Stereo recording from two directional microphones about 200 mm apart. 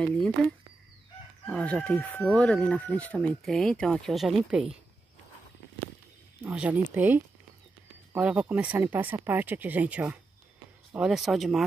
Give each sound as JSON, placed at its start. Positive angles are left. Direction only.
{"t": 0.0, "sound": "speech", "side_deg": 5}
{"t": 6.4, "sound": "speech", "side_deg": -5}